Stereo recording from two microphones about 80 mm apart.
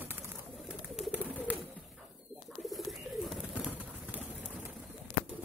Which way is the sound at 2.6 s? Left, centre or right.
Centre.